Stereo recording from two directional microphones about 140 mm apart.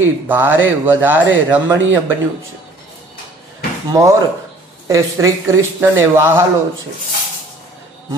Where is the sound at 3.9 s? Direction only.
20° right (ahead or behind).